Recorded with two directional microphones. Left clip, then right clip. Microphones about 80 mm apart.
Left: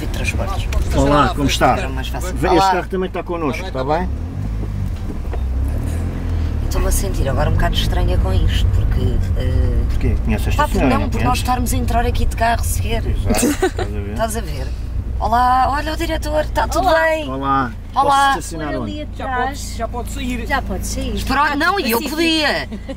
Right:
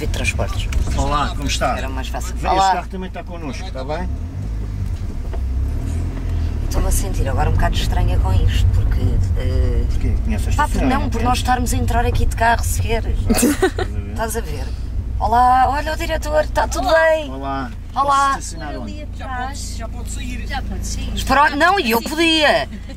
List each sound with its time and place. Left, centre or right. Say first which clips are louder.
0.0 s speech: right 1 dB; centre
0.9 s a woman's voice: left 6 dB; left
2.0 s speech: left 4 dB; centre
3.0 s a woman's voice: left 9 dB; left
6.9 s speech: left 4 dB; centre
10.6 s speech: left 2 dB; centre
15.2 s speech: right 1 dB; centre
17.4 s speech: left 7 dB; left
17.9 s speech: left 2 dB; centre
19.2 s a woman's voice: left 6 dB; left
21.1 s speech: right 2 dB; centre